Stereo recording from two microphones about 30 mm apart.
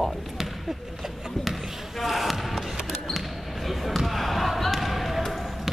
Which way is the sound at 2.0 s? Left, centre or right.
Centre.